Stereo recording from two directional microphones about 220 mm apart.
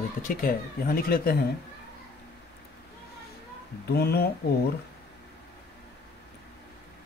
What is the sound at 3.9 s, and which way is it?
Speech, 45° left (ahead or behind).